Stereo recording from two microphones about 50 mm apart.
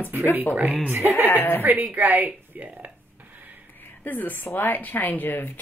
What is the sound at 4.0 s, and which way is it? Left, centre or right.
Speech, left.